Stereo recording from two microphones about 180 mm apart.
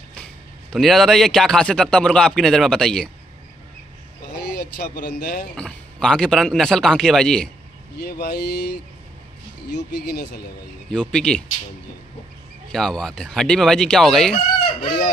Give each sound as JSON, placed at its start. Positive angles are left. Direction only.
{"t": 0.1, "sound": "a man's voice", "side_deg": 5}
{"t": 4.4, "sound": "speech", "side_deg": 60}
{"t": 5.6, "sound": "a man's voice", "side_deg": 5}
{"t": 8.0, "sound": "speech", "side_deg": 65}
{"t": 9.7, "sound": "speech", "side_deg": 70}
{"t": 10.9, "sound": "a man's voice", "side_deg": 5}
{"t": 12.7, "sound": "a man's voice", "side_deg": 5}